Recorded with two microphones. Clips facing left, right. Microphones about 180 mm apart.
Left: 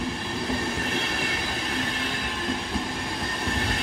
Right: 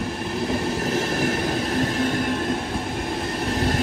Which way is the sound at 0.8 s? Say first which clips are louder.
Right 7 dB; 40° right (ahead or behind).